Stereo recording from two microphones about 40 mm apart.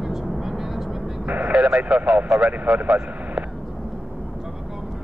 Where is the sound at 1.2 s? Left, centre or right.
Right.